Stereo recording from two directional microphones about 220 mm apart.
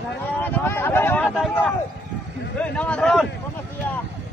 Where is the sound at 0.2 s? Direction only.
10° left (ahead or behind).